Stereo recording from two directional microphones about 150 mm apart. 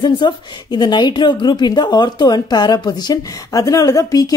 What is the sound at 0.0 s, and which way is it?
A woman's voice, 30° left (ahead or behind).